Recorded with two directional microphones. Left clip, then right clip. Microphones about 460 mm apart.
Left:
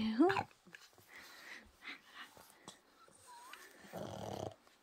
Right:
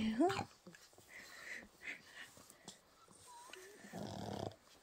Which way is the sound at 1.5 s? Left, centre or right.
Centre.